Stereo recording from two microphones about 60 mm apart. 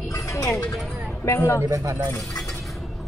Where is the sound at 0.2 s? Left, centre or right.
Left.